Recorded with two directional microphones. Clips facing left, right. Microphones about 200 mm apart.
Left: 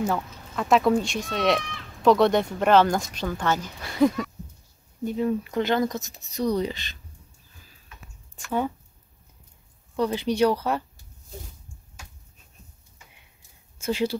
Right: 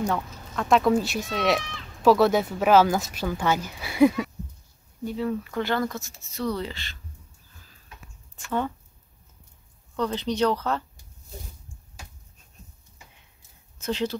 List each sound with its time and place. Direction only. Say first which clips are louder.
0.0 s speech: left 1 dB; 5° left (ahead or behind)
5.0 s speech: left 3 dB; 20° left (ahead or behind)
8.5 s speech: left 1 dB; 10° left (ahead or behind)
9.9 s speech: left 3 dB; 10° left (ahead or behind)
13.7 s speech: left 2 dB; 10° left (ahead or behind)